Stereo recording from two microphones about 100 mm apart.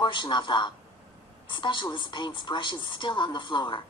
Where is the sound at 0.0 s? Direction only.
50° left (ahead or behind).